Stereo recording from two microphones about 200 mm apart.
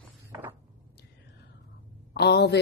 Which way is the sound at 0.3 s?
15° right (ahead or behind).